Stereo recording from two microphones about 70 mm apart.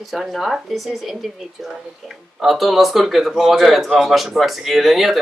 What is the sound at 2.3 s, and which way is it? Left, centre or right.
A man's voice, centre.